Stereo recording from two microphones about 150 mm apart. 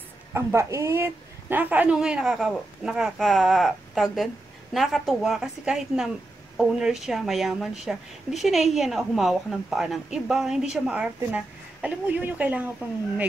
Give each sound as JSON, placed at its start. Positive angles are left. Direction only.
{"t": 0.3, "sound": "speech", "side_deg": -15}